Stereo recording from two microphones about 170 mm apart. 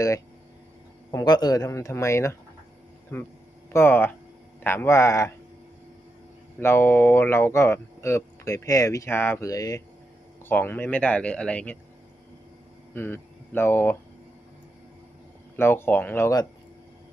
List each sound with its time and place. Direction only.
1.1 s speech: 25° left (ahead or behind)
6.6 s speech: 15° left (ahead or behind)
12.9 s speech: 10° left (ahead or behind)
15.5 s speech: 15° left (ahead or behind)